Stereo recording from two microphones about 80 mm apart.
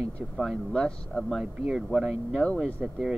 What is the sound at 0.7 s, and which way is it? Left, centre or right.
Speech, centre.